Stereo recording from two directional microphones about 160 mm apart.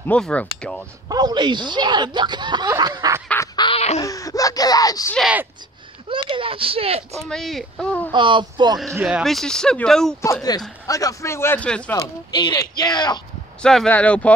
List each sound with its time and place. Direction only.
0.0 s a man's voice: 10° left (ahead or behind)
1.0 s speech: 25° right (ahead or behind)
3.5 s laughter: 30° left (ahead or behind)
4.0 s speech: 20° left (ahead or behind)
6.0 s speech: 30° right (ahead or behind)
7.2 s speech: centre (ahead or behind)
8.1 s speech: 30° right (ahead or behind)
9.0 s speech: centre (ahead or behind)
10.2 s a man's voice: 20° left (ahead or behind)
11.9 s speech: 30° left (ahead or behind)
13.6 s a man's voice: 5° left (ahead or behind)